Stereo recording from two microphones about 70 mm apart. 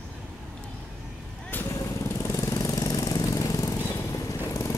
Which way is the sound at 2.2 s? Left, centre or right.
Left.